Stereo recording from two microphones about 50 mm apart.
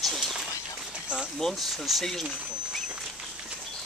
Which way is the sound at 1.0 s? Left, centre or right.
Centre.